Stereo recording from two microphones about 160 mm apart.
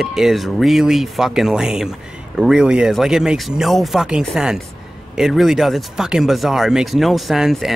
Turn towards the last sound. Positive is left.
turn(degrees=0)  # may be behind; listen again after turning